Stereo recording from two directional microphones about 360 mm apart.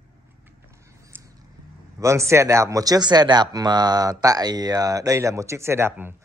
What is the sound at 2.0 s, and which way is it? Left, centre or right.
Speech, centre.